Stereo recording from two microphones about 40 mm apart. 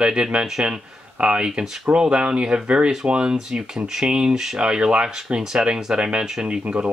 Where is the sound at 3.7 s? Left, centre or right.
Centre; by 6.9 s right.